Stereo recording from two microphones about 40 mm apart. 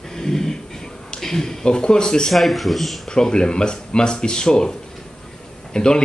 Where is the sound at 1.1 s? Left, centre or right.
Centre.